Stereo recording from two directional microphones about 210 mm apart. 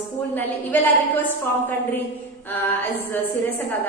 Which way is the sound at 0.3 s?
10° left (ahead or behind).